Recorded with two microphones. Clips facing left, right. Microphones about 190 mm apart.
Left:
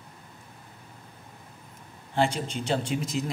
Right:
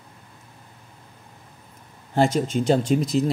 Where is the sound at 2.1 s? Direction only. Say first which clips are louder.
Right 6 dB; 45° right (ahead or behind).